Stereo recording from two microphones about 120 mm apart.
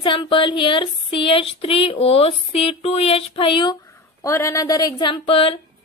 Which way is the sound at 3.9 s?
25° left (ahead or behind).